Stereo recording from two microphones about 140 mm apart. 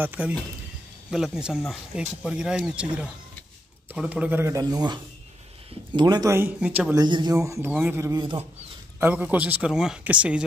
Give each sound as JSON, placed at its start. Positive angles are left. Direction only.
{"t": 0.0, "sound": "a man's voice", "side_deg": -10}
{"t": 6.3, "sound": "speech", "side_deg": -15}
{"t": 7.0, "sound": "a man's voice", "side_deg": -30}